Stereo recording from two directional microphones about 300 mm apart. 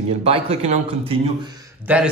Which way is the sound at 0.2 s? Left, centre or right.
Centre.